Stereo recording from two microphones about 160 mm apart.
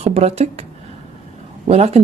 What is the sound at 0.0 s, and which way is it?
Speech, 40° right (ahead or behind).